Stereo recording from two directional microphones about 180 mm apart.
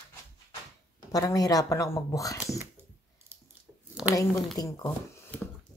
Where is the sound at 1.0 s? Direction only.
20° left (ahead or behind).